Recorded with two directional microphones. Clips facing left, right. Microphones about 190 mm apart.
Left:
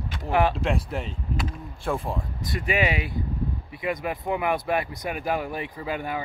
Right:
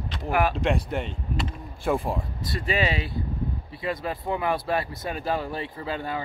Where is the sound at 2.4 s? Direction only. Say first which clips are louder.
Left 2 dB; 15° left (ahead or behind).